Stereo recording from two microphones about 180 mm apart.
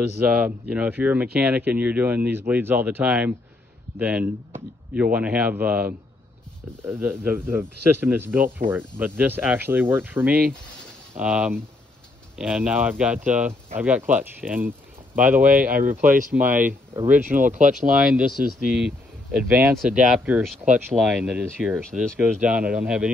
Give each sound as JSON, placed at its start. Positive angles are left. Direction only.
{"t": 0.2, "sound": "speech", "side_deg": -10}
{"t": 17.3, "sound": "speech", "side_deg": -45}
{"t": 17.9, "sound": "speech", "side_deg": -5}